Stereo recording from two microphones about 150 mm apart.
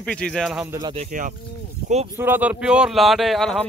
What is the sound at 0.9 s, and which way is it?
Speech, 60° right (ahead or behind).